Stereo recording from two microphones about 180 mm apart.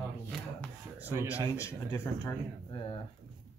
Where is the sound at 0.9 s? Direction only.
10° right (ahead or behind).